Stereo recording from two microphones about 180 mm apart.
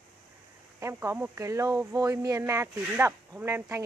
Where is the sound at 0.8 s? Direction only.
15° right (ahead or behind).